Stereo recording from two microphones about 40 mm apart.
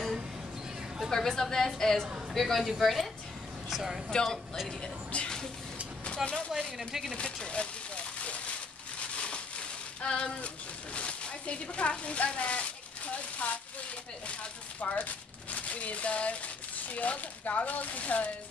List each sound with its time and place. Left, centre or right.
1.1 s a woman's voice: centre
2.6 s a woman's voice: centre
4.1 s speech: centre
5.1 s speech: left
6.8 s speech: centre
7.4 s a sound: left
11.0 s speech: left
14.8 s speech: left